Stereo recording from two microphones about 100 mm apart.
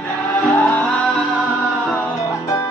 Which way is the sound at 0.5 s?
20° left (ahead or behind).